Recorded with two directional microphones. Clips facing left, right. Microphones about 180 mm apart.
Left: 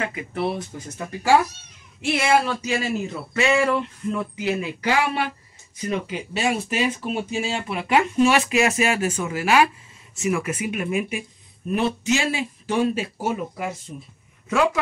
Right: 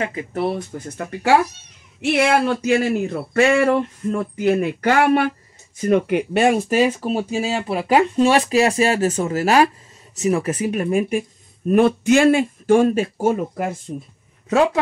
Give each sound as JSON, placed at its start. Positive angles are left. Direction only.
{"t": 0.3, "sound": "speech", "side_deg": -60}
{"t": 11.7, "sound": "speech", "side_deg": -55}
{"t": 14.5, "sound": "speech", "side_deg": -30}